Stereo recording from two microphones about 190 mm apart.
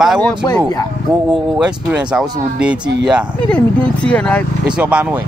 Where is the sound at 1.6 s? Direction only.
5° right (ahead or behind).